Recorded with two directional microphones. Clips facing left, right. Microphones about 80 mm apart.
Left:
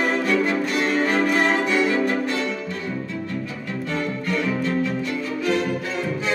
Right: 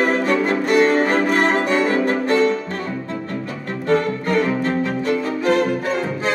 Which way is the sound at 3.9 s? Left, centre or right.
Right.